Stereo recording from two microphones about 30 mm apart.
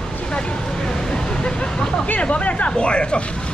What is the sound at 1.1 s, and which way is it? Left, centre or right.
Speech, left.